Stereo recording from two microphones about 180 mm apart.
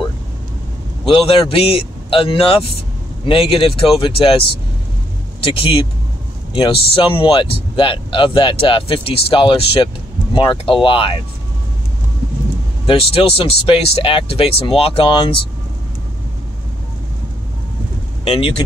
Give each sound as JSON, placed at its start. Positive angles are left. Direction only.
{"t": 1.0, "sound": "speech", "side_deg": 30}
{"t": 5.4, "sound": "speech", "side_deg": 30}
{"t": 12.8, "sound": "speech", "side_deg": 30}
{"t": 18.2, "sound": "speech", "side_deg": 35}